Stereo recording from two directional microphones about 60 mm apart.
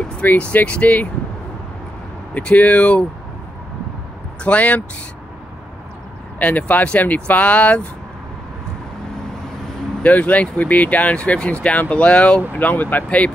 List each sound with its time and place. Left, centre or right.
0.2 s speech: left
2.3 s speech: left
4.4 s speech: left
6.4 s speech: left
10.0 s speech: left
12.5 s speech: left